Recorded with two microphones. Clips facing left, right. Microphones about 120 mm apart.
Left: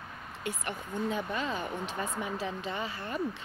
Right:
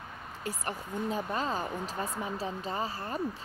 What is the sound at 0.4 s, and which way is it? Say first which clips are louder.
Speech: even; 40° right (ahead or behind).